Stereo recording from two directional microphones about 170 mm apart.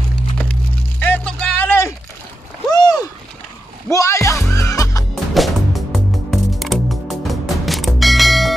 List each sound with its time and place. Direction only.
0.4 s a sound: 10° left (ahead or behind)
2.7 s boat: 25° left (ahead or behind)
3.9 s music: 20° left (ahead or behind)
5.1 s music: centre (ahead or behind)